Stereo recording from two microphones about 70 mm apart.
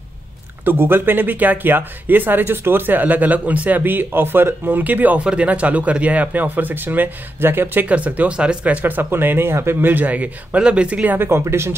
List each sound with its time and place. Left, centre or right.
0.7 s speech: right
7.8 s speech: centre
11.1 s speech: right